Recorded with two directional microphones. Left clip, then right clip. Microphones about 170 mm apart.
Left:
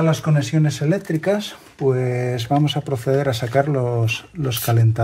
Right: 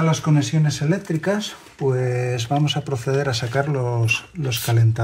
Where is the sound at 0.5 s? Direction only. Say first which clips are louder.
Left 3 dB; 35° left (ahead or behind).